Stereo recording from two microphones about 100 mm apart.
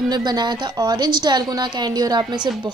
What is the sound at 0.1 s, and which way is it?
A woman's voice, 45° right (ahead or behind).